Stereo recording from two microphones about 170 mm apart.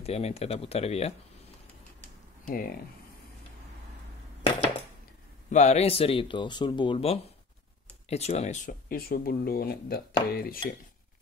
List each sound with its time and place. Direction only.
0.0 s speech: 35° left (ahead or behind)
2.4 s speech: 55° left (ahead or behind)
5.5 s speech: 45° left (ahead or behind); by 10.6 s 65° left (ahead or behind)